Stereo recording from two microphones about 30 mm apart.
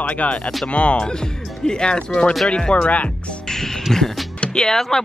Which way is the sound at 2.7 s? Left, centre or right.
Left.